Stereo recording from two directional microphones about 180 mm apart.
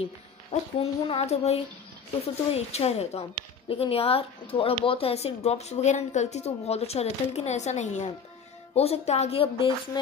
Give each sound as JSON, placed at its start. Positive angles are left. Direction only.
{"t": 0.0, "sound": "speech", "side_deg": 35}